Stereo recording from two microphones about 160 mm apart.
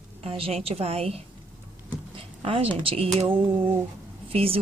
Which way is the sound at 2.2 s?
35° right (ahead or behind).